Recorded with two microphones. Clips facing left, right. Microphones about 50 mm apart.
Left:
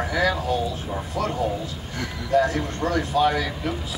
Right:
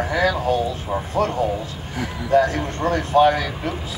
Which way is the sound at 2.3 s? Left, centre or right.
Right.